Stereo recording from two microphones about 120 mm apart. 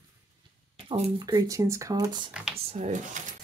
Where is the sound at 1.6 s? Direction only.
25° right (ahead or behind).